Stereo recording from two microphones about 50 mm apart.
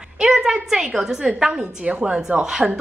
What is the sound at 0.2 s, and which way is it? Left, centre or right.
A woman's voice, centre.